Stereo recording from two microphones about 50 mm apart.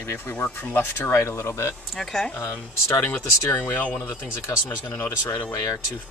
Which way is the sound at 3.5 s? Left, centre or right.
Left.